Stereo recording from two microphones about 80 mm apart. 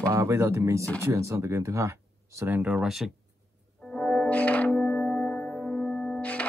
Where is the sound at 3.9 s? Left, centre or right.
Centre.